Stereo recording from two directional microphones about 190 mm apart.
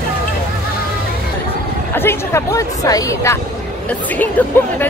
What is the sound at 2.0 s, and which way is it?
Speech, 15° left (ahead or behind).